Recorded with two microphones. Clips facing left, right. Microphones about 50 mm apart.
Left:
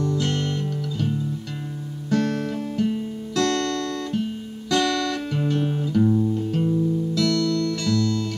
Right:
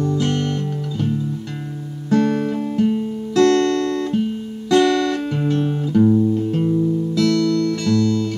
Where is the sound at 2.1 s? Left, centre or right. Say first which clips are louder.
Right 6 dB; centre.